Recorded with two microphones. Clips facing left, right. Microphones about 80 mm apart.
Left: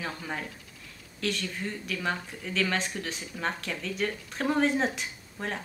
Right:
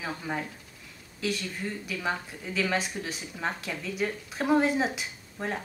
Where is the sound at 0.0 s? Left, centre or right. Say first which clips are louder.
Right 2 dB; centre.